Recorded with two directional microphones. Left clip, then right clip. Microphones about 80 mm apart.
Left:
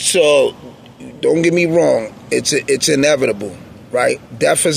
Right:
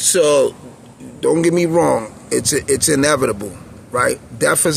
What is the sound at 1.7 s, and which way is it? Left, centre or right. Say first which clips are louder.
Speech: left 2 dB; right.